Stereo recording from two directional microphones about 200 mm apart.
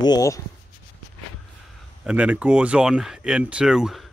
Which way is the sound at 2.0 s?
5° right (ahead or behind).